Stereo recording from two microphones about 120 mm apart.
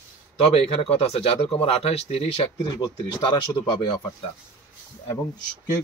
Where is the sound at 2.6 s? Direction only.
35° left (ahead or behind).